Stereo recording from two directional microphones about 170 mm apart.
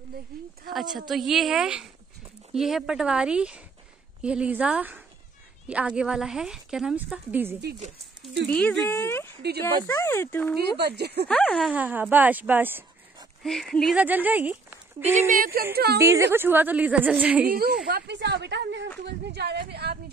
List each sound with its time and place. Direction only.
0.7 s a woman's voice: centre (ahead or behind)
8.5 s speech: 10° left (ahead or behind)
10.8 s a woman's voice: 75° right (ahead or behind)
11.2 s a woman's voice: 5° left (ahead or behind)
11.7 s a woman's voice: 10° right (ahead or behind)
13.4 s a woman's voice: centre (ahead or behind)
14.0 s speech: 10° right (ahead or behind)
15.1 s a woman's voice: 55° right (ahead or behind)
16.0 s a woman's voice: 15° right (ahead or behind)
17.5 s a woman's voice: 65° right (ahead or behind)
17.8 s a woman's voice: 75° right (ahead or behind)
19.2 s a woman's voice: 75° right (ahead or behind)